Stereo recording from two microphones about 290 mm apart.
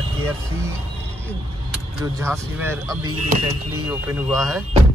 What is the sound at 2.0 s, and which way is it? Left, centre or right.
Speech, centre.